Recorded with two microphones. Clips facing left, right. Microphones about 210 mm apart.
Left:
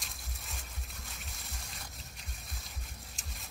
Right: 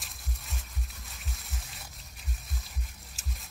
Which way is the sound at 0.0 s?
Centre (ahead or behind).